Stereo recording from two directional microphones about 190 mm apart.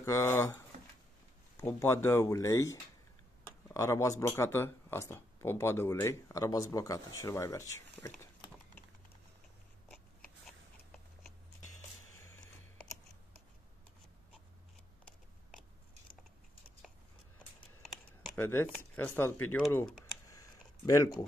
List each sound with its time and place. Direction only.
0.0 s speech: 15° left (ahead or behind)
1.6 s speech: 15° left (ahead or behind)
18.2 s a sound: 10° left (ahead or behind)
18.9 s speech: 10° left (ahead or behind)